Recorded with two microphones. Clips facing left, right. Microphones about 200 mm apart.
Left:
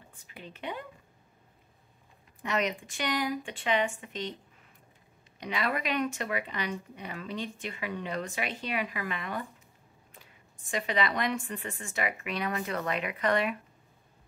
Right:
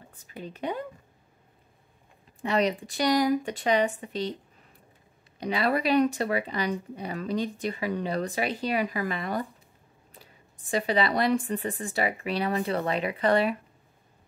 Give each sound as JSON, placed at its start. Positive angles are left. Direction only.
{"t": 0.1, "sound": "speech", "side_deg": -40}
{"t": 2.4, "sound": "speech", "side_deg": -35}
{"t": 5.4, "sound": "speech", "side_deg": -35}